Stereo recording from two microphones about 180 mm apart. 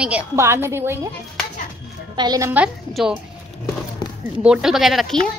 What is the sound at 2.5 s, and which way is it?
Speech, 5° right (ahead or behind).